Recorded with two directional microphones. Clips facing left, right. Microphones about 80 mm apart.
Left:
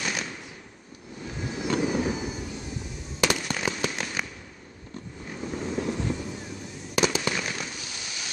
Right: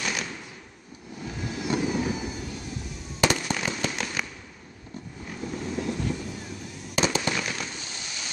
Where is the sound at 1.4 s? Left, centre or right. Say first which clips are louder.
Left 1 dB; centre.